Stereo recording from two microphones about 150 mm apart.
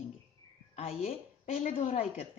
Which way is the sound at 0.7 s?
45° left (ahead or behind).